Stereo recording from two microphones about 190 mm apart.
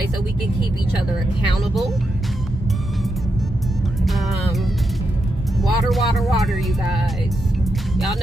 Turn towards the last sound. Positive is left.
turn(degrees=0)  # may be behind; listen again after turning